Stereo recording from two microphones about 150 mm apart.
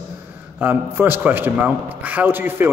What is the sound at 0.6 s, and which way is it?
A man's voice, 15° right (ahead or behind).